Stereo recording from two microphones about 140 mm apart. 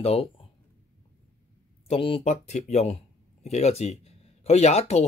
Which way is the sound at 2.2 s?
55° left (ahead or behind).